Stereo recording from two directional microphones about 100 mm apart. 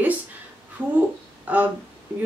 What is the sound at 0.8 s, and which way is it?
Speech, 15° right (ahead or behind).